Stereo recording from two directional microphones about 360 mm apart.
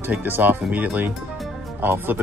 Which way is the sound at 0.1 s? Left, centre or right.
Centre.